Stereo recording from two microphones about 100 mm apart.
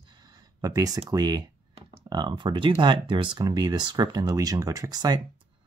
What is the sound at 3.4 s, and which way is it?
Speech, 40° right (ahead or behind).